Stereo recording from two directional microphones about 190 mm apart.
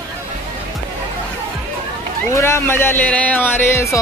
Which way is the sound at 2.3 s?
15° left (ahead or behind).